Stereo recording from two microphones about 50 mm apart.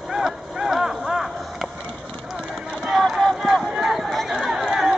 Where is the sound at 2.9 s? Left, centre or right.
Centre.